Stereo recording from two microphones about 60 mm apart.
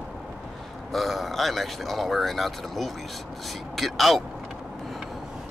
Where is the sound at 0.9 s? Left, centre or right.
Centre.